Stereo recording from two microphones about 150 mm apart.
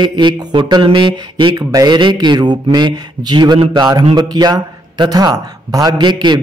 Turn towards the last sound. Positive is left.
turn(degrees=-30)  # may be behind; listen again after turning